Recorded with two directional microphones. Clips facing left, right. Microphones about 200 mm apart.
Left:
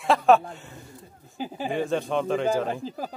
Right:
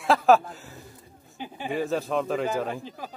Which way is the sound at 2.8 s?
35° left (ahead or behind).